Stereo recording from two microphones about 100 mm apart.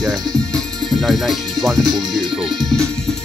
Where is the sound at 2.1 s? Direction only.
5° right (ahead or behind).